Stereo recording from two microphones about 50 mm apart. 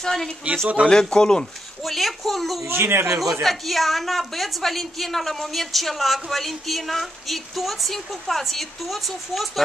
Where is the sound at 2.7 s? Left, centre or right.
Right.